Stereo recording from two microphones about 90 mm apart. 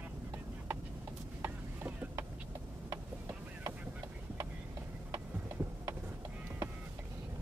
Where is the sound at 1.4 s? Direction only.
20° right (ahead or behind).